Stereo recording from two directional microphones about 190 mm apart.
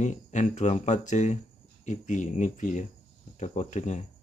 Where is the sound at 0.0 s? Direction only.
40° left (ahead or behind).